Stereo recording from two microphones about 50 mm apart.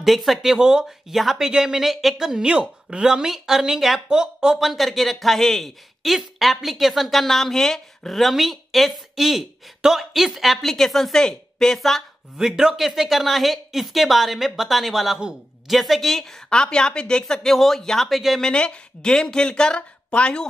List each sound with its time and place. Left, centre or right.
0.0 s a man's voice: centre
12.4 s a man's voice: centre
16.4 s speech: centre
18.4 s speech: centre